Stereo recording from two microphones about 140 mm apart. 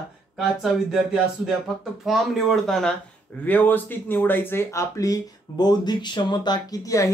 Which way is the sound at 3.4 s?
10° left (ahead or behind).